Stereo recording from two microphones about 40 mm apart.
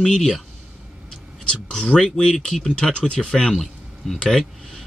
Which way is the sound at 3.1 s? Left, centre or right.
Left.